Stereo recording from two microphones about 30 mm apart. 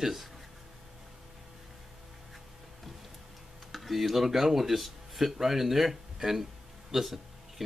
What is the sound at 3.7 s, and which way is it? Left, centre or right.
Speech, centre.